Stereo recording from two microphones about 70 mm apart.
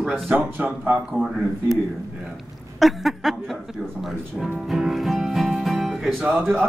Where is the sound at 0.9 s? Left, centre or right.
Centre.